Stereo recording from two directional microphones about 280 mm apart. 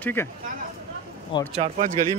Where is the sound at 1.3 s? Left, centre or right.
Centre.